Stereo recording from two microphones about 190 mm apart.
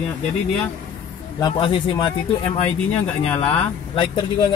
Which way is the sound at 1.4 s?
25° left (ahead or behind).